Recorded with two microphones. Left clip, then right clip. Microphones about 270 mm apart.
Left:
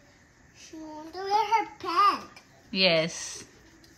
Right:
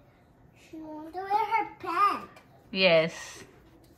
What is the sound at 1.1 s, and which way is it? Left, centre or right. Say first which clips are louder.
Child singing: left 2 dB; centre.